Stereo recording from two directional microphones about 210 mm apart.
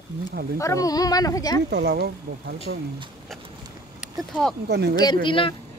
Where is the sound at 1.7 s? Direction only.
50° right (ahead or behind).